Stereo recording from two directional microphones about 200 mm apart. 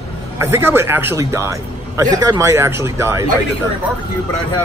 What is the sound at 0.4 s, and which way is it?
A man's voice, 10° right (ahead or behind).